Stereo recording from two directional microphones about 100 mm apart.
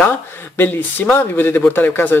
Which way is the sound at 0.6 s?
20° left (ahead or behind).